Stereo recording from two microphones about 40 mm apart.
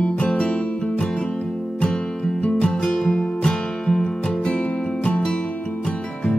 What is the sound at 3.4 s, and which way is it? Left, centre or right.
Music, centre.